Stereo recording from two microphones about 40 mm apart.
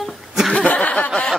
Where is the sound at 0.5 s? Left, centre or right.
Left.